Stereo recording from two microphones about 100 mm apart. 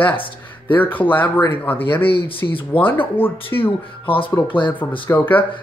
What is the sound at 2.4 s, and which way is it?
Speech, 35° left (ahead or behind).